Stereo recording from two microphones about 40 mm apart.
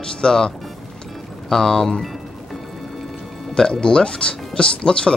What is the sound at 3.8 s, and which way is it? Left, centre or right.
Speech, left.